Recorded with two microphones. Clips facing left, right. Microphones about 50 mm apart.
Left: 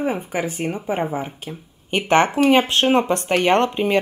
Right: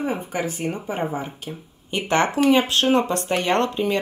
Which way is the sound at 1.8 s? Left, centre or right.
Left.